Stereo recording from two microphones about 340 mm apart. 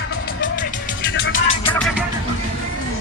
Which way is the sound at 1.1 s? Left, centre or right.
Left.